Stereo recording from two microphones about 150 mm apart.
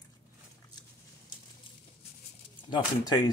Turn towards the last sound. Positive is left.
turn(degrees=25)  # may be behind; listen again after turning